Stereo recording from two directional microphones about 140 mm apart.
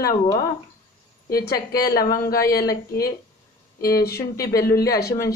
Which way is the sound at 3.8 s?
90° left.